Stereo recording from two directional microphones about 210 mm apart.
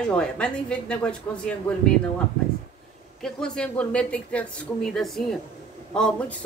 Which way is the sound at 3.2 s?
5° left (ahead or behind).